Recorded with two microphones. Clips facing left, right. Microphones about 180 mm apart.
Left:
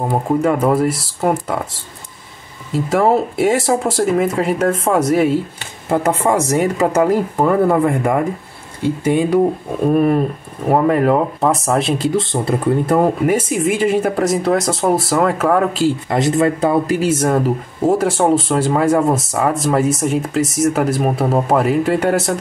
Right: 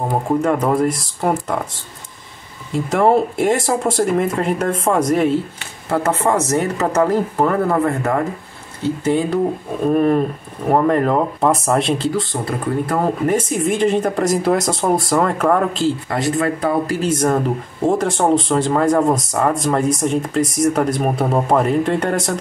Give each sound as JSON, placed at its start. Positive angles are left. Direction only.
{"t": 0.1, "sound": "speech", "side_deg": 5}
{"t": 2.7, "sound": "speech", "side_deg": 0}
{"t": 12.0, "sound": "speech", "side_deg": 20}
{"t": 13.0, "sound": "speech", "side_deg": 10}
{"t": 16.1, "sound": "speech", "side_deg": 25}
{"t": 17.0, "sound": "speech", "side_deg": 5}